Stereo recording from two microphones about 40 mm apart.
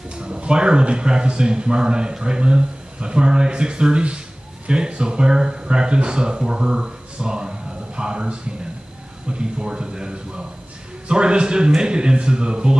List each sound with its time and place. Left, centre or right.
0.2 s speech: right